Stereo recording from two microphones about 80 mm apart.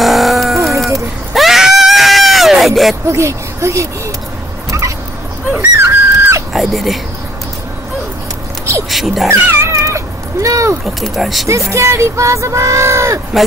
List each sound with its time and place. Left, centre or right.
0.0 s a sound: centre
0.9 s screaming: centre
3.1 s speech: right
4.6 s a sound: right
5.6 s dog: right
6.5 s speech: centre
8.9 s speech: centre
9.3 s cat: right
11.0 s speech: centre
11.4 s speech: right